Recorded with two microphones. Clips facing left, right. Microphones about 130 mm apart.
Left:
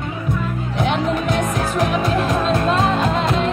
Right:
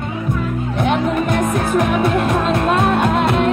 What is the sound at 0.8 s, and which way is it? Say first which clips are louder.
Music: right 2 dB; 55° right (ahead or behind).